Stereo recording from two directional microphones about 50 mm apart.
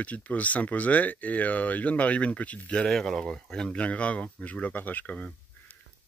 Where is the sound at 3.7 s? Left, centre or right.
Left.